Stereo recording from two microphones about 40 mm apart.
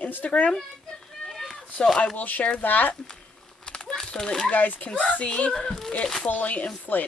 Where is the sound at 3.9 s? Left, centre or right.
Centre.